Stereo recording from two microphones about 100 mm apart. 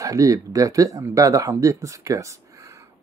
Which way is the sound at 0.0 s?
35° right (ahead or behind).